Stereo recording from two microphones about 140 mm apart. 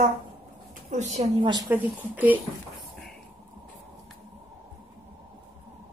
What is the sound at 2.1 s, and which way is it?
Speech, 10° right (ahead or behind).